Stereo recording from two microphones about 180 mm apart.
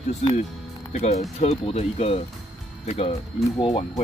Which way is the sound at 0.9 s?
40° left (ahead or behind).